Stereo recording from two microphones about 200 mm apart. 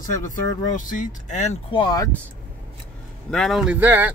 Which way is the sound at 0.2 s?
40° left (ahead or behind).